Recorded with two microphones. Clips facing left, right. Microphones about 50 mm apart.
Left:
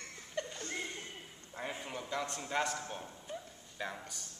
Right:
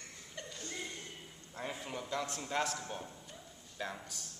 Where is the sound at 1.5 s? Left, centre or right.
Centre.